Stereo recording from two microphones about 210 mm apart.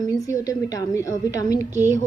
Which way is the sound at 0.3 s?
15° left (ahead or behind).